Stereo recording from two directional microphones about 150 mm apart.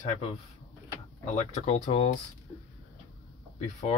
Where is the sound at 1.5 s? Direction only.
50° left (ahead or behind).